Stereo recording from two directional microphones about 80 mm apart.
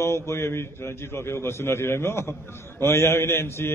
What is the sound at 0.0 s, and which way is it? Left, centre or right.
A man's voice, left.